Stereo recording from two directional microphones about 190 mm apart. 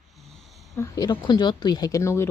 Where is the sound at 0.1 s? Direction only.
Centre (ahead or behind).